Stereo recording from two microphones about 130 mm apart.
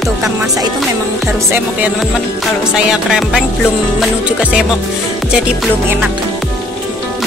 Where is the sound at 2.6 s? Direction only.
5° right (ahead or behind).